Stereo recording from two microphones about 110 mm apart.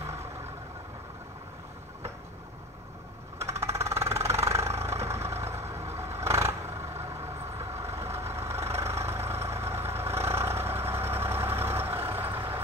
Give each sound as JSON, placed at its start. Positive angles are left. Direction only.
{"t": 3.3, "sound": "vehicle", "side_deg": -25}